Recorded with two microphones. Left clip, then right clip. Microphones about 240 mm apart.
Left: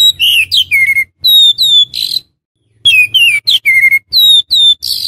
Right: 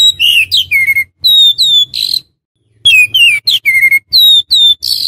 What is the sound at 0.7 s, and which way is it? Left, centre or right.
Bird, centre.